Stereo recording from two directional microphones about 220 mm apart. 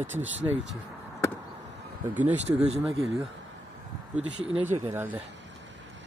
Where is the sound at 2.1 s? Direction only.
5° right (ahead or behind).